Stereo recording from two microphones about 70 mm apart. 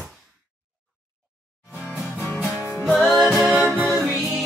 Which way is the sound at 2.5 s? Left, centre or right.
Left.